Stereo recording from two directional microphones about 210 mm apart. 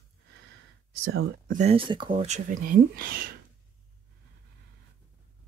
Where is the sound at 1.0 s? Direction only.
70° right (ahead or behind).